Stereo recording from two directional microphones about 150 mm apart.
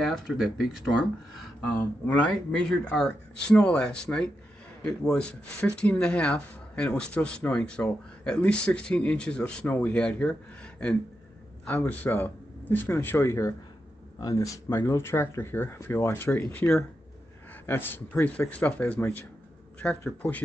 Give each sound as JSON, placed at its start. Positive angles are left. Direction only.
{"t": 0.0, "sound": "speech", "side_deg": 0}
{"t": 2.0, "sound": "speech", "side_deg": 10}